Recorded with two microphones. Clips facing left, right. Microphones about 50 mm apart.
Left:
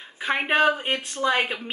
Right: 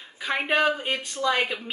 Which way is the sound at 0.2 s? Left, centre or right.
Centre.